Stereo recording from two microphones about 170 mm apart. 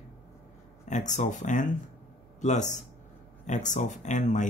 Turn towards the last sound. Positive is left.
turn(degrees=45)  # may be behind; listen again after turning